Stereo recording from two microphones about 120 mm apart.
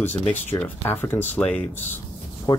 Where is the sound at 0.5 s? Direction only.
35° left (ahead or behind).